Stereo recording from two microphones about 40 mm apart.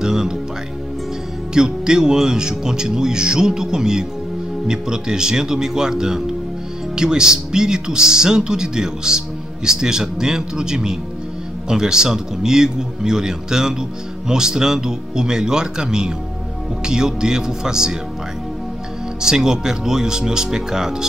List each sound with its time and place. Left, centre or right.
0.0 s speech: centre
1.5 s a man's voice: centre
19.2 s a man's voice: centre